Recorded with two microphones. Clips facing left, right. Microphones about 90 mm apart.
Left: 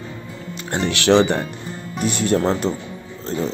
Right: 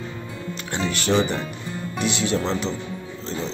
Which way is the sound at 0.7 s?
60° left (ahead or behind).